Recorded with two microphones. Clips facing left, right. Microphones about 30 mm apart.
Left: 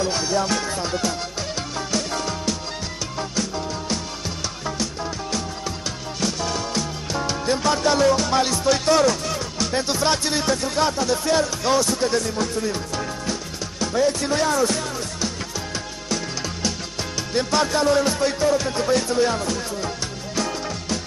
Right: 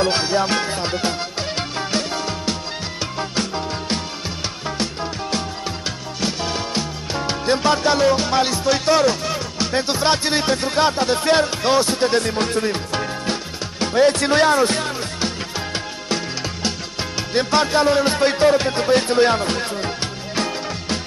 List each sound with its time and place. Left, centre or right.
0.0 s music: right
0.3 s music: right
3.3 s music: right
6.2 s music: right
17.3 s music: right
18.1 s music: right